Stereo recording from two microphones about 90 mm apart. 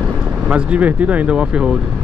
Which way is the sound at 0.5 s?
15° right (ahead or behind).